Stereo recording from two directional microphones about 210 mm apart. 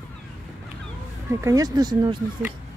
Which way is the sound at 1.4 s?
15° right (ahead or behind).